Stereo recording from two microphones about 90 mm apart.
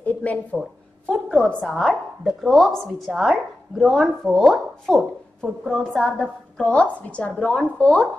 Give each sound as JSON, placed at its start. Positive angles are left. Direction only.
{"t": 0.0, "sound": "speech", "side_deg": 15}
{"t": 1.1, "sound": "a woman's voice", "side_deg": 0}
{"t": 6.6, "sound": "a woman's voice", "side_deg": 10}